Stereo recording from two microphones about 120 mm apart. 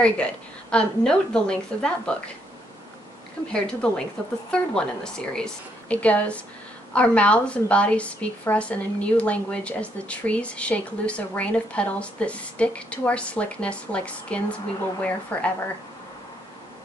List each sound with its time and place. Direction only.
0.0 s a woman's voice: 10° left (ahead or behind)
3.5 s a woman's voice: 10° left (ahead or behind)